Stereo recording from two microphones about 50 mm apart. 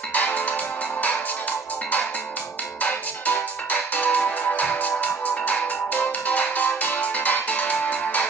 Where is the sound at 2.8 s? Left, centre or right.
Left.